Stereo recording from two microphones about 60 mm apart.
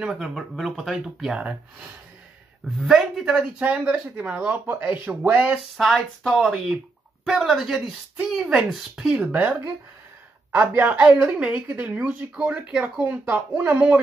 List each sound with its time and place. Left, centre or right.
0.0 s speech: centre
1.4 s speech: centre
2.8 s speech: centre; by 5.4 s right
5.8 s speech: centre
9.3 s speech: right
13.0 s speech: right